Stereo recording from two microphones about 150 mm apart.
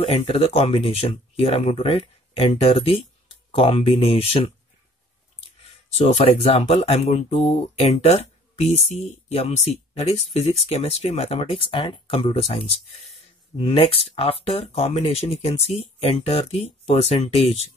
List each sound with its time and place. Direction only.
0.0 s speech: 40° left (ahead or behind)
5.9 s speech: 45° left (ahead or behind)